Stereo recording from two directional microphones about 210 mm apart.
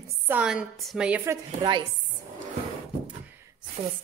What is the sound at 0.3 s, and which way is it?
A woman's voice, 5° right (ahead or behind).